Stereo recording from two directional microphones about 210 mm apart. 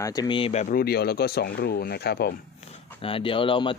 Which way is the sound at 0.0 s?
15° left (ahead or behind).